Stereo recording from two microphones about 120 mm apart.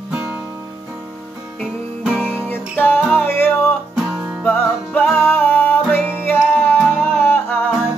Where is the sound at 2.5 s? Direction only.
15° left (ahead or behind).